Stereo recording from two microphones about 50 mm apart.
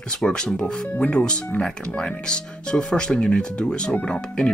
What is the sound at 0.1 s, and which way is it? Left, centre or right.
Speech, centre.